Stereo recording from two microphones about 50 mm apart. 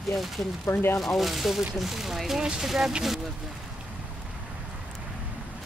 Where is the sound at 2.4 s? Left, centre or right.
Centre.